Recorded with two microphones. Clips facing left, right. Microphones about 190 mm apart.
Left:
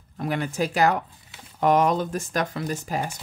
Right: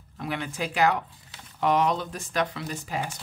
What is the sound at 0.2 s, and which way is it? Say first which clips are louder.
Speech: left 5 dB; 45° left (ahead or behind).